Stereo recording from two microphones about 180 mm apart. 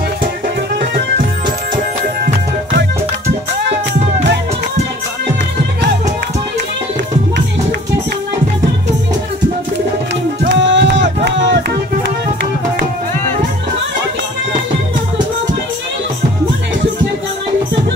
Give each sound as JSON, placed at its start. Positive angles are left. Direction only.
{"t": 10.4, "sound": "music", "side_deg": -75}